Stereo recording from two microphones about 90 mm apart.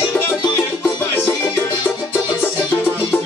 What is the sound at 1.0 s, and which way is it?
Music, 20° left (ahead or behind).